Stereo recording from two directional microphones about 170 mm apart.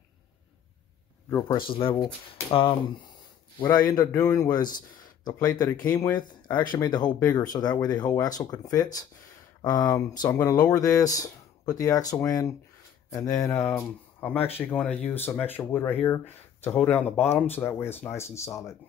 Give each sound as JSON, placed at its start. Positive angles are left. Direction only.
{"t": 1.5, "sound": "speech", "side_deg": 30}
{"t": 3.9, "sound": "speech", "side_deg": 20}